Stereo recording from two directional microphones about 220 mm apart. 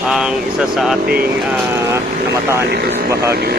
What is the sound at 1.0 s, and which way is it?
Speech, 45° right (ahead or behind).